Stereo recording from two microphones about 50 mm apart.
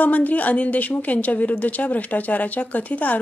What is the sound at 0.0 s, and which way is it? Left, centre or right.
A woman's voice, left.